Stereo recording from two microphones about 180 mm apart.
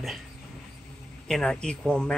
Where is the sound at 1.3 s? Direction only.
5° left (ahead or behind).